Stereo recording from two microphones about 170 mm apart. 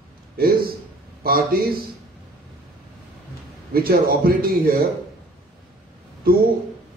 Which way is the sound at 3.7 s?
60° right (ahead or behind).